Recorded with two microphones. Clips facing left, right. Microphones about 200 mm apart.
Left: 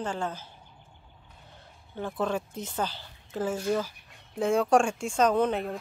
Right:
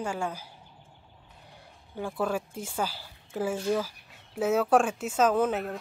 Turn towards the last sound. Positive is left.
turn(degrees=-5)  # may be behind; listen again after turning